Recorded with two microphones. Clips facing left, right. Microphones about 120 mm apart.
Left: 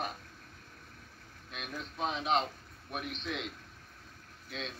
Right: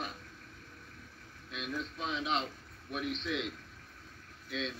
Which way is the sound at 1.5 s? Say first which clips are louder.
Right 3 dB; 50° left (ahead or behind).